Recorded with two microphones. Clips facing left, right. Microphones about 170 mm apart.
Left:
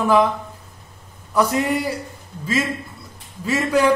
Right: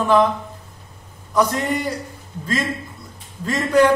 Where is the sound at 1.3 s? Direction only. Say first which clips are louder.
Left 1 dB; 10° left (ahead or behind).